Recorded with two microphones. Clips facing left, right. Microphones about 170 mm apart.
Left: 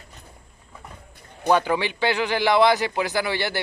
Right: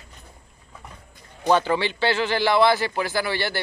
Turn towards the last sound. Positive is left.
turn(degrees=20)  # may be behind; listen again after turning